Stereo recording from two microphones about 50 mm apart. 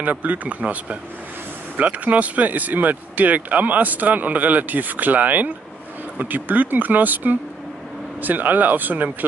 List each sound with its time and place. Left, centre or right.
0.0 s speech: right